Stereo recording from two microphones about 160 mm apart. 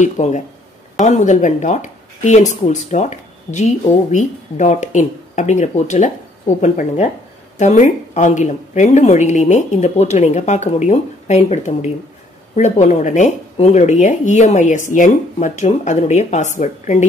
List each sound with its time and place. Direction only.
0.0 s speech: 50° left (ahead or behind)